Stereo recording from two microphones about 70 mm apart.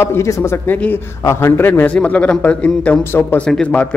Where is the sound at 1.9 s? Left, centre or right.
Centre.